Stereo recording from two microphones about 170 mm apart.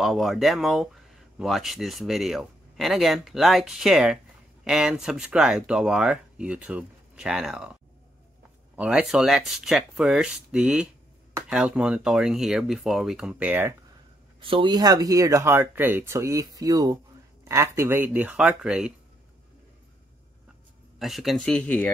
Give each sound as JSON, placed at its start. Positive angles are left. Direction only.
{"t": 0.0, "sound": "speech", "side_deg": 0}
{"t": 8.7, "sound": "speech", "side_deg": -5}
{"t": 14.4, "sound": "speech", "side_deg": -30}
{"t": 21.0, "sound": "speech", "side_deg": 0}